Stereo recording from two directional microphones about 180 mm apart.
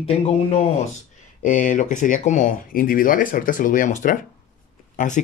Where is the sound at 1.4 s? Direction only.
45° left (ahead or behind).